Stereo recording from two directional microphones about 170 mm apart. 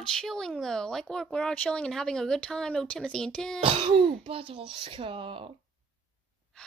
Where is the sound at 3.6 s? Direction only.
30° right (ahead or behind).